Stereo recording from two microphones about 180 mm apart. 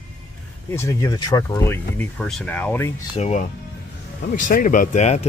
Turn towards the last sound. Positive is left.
turn(degrees=40)  # may be behind; listen again after turning